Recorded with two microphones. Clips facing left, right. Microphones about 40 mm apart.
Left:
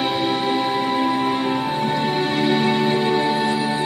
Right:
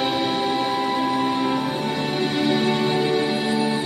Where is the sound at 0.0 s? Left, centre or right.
Centre.